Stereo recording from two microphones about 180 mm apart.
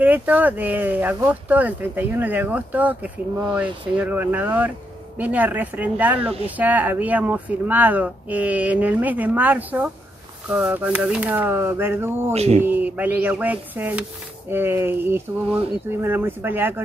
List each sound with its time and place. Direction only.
0.0 s speech: 10° right (ahead or behind)
12.3 s speech: 35° right (ahead or behind)
12.6 s speech: 10° right (ahead or behind)